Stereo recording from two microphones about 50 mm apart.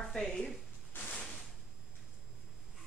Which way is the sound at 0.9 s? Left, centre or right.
Left.